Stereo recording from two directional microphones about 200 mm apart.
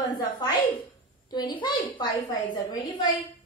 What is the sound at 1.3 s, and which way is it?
A woman's voice, 20° left (ahead or behind).